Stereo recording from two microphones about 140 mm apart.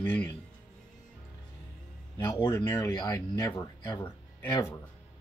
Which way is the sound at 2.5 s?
20° left (ahead or behind).